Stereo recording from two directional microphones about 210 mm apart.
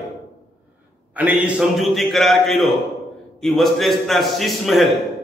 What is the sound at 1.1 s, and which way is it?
A man's voice, 5° right (ahead or behind).